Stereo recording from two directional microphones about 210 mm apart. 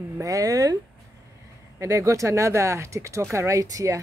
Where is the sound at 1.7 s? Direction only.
15° right (ahead or behind).